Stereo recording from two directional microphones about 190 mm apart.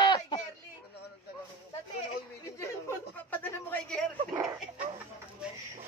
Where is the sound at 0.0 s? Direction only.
20° left (ahead or behind).